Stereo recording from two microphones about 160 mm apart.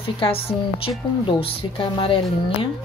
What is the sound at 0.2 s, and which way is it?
Speech, 35° left (ahead or behind).